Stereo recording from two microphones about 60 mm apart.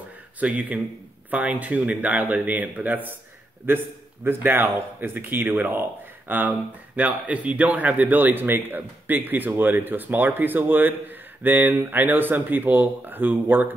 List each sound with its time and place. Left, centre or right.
0.4 s a man's voice: right